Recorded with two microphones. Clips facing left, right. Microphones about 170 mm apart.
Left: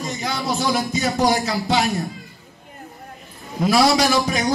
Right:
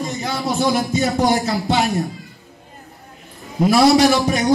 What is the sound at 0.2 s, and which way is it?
Speech, centre (ahead or behind).